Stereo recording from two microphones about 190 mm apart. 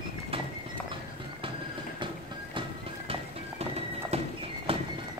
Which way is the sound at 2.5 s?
30° right (ahead or behind).